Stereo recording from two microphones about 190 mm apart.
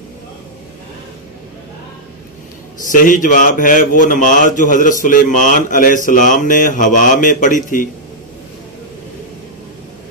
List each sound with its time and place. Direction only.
2.9 s a man's voice: 45° left (ahead or behind)